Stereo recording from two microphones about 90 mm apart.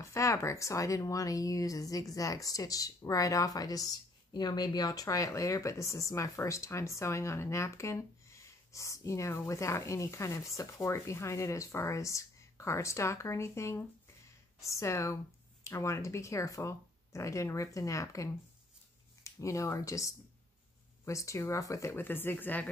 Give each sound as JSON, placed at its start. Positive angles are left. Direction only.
{"t": 0.0, "sound": "speech", "side_deg": 35}
{"t": 21.9, "sound": "speech", "side_deg": 25}